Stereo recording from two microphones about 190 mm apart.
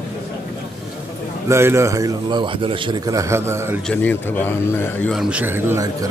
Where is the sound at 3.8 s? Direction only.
10° left (ahead or behind).